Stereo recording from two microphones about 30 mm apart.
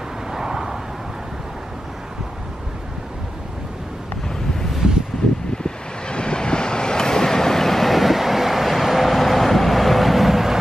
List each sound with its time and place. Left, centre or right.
0.3 s vehicle: centre
5.6 s vehicle: left; by 10.6 s centre